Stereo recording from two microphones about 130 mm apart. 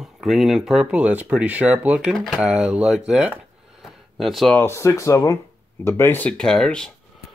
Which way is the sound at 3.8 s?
Centre (ahead or behind).